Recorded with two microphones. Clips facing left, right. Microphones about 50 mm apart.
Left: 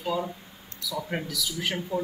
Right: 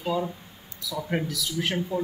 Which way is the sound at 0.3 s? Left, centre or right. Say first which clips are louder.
Even; centre.